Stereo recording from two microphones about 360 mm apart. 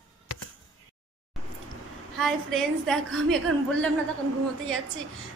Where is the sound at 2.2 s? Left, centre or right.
Centre.